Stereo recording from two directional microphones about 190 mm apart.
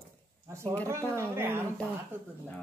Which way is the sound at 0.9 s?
10° right (ahead or behind).